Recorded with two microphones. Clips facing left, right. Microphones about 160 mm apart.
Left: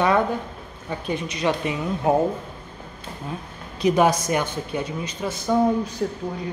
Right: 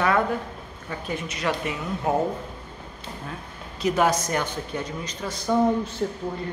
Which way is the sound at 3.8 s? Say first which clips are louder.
Left 3 dB; 15° left (ahead or behind).